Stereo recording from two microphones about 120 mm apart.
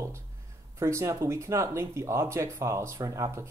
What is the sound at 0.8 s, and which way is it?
Speech, 25° right (ahead or behind).